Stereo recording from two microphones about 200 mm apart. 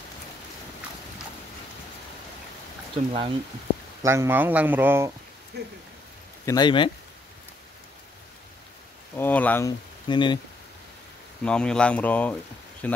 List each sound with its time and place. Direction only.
2.9 s speech: 25° right (ahead or behind)
4.0 s speech: 15° right (ahead or behind)
5.5 s speech: 55° right (ahead or behind)
6.4 s speech: 20° left (ahead or behind)
9.1 s speech: 10° left (ahead or behind)
11.4 s speech: 5° left (ahead or behind)